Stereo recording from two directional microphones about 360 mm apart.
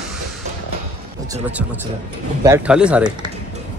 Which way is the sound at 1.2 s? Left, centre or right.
Centre.